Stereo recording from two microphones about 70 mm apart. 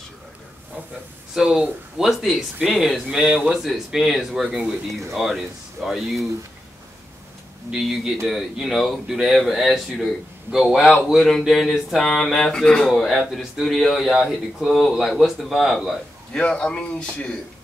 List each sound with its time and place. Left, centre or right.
1.3 s speech: centre
7.7 s a man's voice: centre
16.3 s a man's voice: centre